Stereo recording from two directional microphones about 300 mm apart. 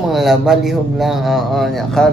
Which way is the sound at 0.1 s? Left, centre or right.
Centre.